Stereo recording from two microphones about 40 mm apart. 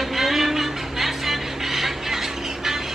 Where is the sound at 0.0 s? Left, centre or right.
Centre.